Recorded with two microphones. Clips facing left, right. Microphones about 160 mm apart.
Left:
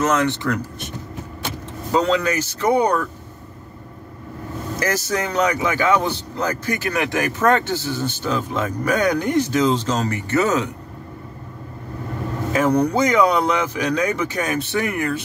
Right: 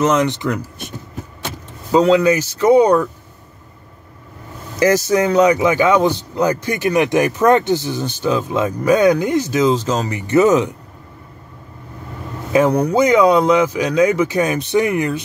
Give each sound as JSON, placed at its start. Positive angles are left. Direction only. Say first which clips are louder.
{"t": 0.0, "sound": "a man's voice", "louder": "right 3 dB", "side_deg": -15}
{"t": 1.9, "sound": "a man's voice", "louder": "right 7 dB", "side_deg": -10}
{"t": 4.7, "sound": "a man's voice", "louder": "right 9 dB", "side_deg": -15}
{"t": 12.5, "sound": "a man's voice", "louder": "right 4 dB", "side_deg": -10}